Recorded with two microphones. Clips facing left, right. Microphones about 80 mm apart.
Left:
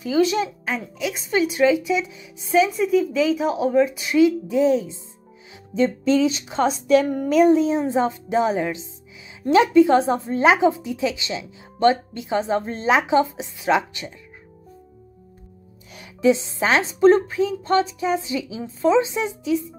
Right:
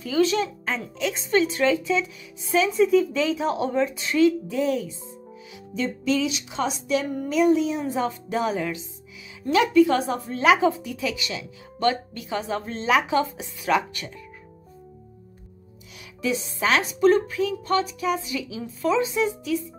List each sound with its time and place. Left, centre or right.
0.0 s speech: centre
2.7 s speech: centre; by 4.9 s left
5.8 s a woman's voice: left
16.2 s a woman's voice: left